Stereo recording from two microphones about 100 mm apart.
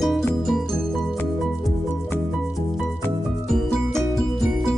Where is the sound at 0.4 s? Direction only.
Centre (ahead or behind).